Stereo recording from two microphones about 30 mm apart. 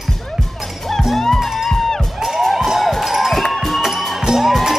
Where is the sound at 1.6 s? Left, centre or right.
Centre.